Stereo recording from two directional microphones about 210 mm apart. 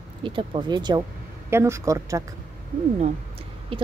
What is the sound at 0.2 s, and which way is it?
Speech, 25° right (ahead or behind).